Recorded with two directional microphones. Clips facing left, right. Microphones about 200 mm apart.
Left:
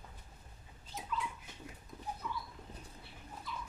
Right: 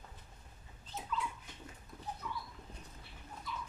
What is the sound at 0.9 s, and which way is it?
Dog, 10° left (ahead or behind).